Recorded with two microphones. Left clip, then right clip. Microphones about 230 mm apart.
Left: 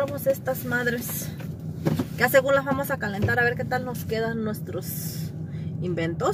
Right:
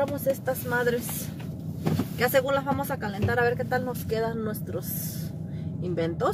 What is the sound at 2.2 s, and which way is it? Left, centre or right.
Speech, left.